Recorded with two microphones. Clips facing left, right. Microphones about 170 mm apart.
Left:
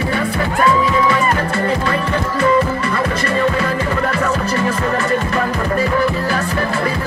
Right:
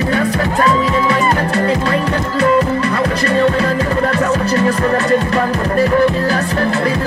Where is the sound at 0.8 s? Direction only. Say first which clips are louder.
Right 1 dB; 35° right (ahead or behind).